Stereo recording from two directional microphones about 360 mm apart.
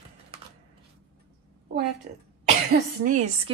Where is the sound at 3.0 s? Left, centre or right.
Centre.